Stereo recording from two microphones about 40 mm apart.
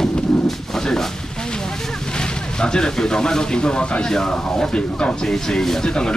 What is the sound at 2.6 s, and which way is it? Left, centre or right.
Speech, centre.